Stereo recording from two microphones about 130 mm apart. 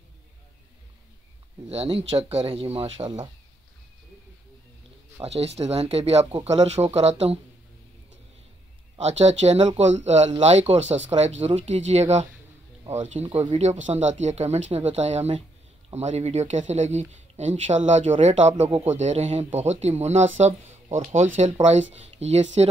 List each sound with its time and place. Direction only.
1.7 s speech: 50° right (ahead or behind)
5.2 s speech: 55° right (ahead or behind)
8.9 s speech: 55° right (ahead or behind)